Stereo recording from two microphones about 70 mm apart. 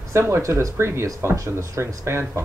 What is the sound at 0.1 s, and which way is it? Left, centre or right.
Speech, right.